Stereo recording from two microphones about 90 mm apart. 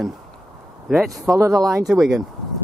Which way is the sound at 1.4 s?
40° right (ahead or behind).